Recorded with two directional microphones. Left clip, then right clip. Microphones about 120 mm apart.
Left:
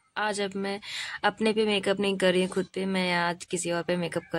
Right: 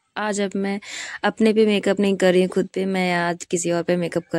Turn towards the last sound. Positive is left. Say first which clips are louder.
# right 7 dB
turn(degrees=-40)  # may be behind; listen again after turning